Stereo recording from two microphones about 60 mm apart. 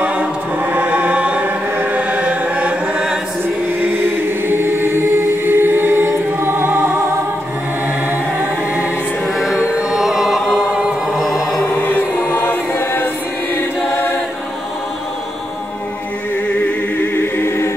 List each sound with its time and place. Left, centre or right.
0.7 s chant: right
3.8 s choir: right
9.4 s chant: centre
10.7 s choir: centre
11.1 s music: centre
11.8 s choir: left
16.4 s music: left
17.1 s choir: left